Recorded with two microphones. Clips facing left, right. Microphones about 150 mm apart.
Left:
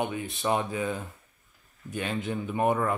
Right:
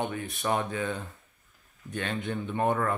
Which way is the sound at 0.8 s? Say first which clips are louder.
Left 1 dB; centre (ahead or behind).